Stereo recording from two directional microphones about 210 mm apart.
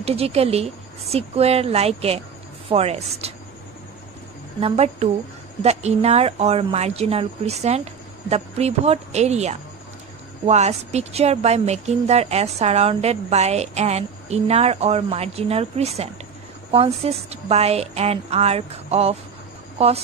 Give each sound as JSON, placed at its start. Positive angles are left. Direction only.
{"t": 0.0, "sound": "a woman's voice", "side_deg": -30}
{"t": 4.6, "sound": "a woman's voice", "side_deg": -30}